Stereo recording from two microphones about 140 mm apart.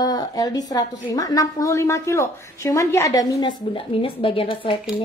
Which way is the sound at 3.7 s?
40° left (ahead or behind).